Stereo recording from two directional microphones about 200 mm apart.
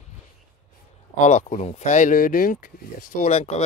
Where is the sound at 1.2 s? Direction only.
35° left (ahead or behind).